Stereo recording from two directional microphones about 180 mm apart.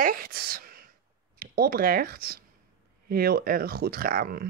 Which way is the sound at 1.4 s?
55° right (ahead or behind).